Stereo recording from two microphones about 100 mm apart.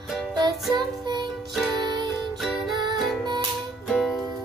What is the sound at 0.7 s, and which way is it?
Music, 45° right (ahead or behind).